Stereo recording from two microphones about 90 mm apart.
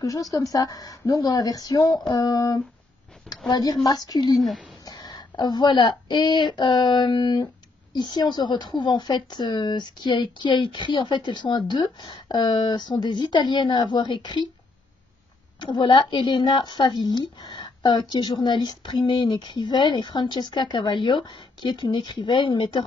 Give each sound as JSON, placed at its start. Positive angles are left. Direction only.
{"t": 0.0, "sound": "a woman's voice", "side_deg": 40}
{"t": 15.6, "sound": "a woman's voice", "side_deg": 60}